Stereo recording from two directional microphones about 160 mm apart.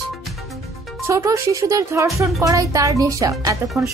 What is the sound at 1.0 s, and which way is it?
A child's voice, 20° right (ahead or behind).